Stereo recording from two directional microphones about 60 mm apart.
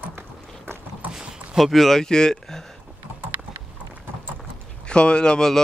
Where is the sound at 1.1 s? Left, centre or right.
Centre.